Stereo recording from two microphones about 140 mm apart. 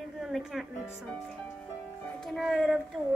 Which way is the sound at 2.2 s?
Centre (ahead or behind).